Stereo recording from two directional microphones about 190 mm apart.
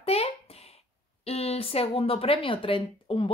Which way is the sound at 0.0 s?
30° left (ahead or behind).